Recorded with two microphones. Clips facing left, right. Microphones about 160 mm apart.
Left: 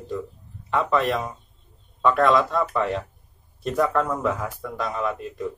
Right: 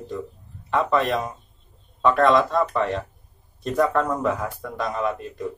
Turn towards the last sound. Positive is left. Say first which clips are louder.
# right 1 dB
turn(degrees=0)  # may be behind; listen again after turning